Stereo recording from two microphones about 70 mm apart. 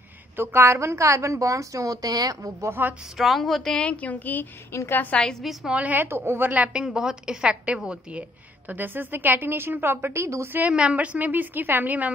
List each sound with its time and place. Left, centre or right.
0.4 s a woman's voice: right
2.8 s a woman's voice: right
3.2 s a woman's voice: centre; by 5.1 s left
5.1 s a woman's voice: centre
5.4 s a woman's voice: centre
5.7 s a woman's voice: right
6.5 s a woman's voice: centre; by 10.5 s right
10.7 s a woman's voice: centre